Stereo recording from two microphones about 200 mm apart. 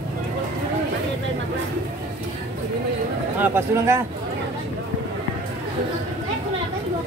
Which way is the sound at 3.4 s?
10° right (ahead or behind).